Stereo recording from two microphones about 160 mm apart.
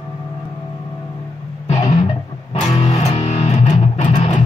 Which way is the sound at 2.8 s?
40° left (ahead or behind).